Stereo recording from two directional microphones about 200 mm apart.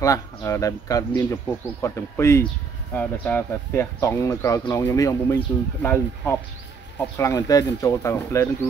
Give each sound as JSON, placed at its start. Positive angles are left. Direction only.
{"t": 0.0, "sound": "speech", "side_deg": 15}